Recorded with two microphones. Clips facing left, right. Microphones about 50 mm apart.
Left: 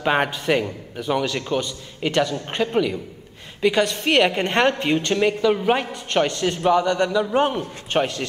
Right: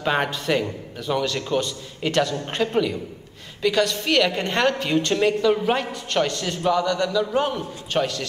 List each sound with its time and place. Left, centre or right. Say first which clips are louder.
0.0 s a woman's voice: left 2 dB; centre
3.6 s a woman's voice: left 2 dB; left
4.9 s a woman's voice: even; centre